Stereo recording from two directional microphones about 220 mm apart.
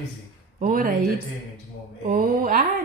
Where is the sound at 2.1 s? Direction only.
40° right (ahead or behind).